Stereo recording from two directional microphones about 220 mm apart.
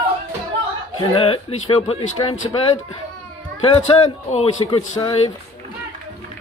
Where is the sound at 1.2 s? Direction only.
25° left (ahead or behind).